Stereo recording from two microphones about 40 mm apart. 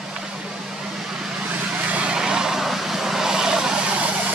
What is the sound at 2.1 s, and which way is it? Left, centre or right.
Vehicle, centre.